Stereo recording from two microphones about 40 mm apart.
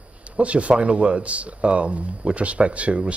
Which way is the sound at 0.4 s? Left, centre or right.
Right.